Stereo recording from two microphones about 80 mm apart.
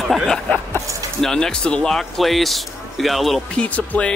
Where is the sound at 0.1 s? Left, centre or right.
Centre.